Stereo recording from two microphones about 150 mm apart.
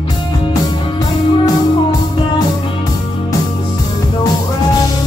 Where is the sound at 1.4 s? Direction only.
20° left (ahead or behind).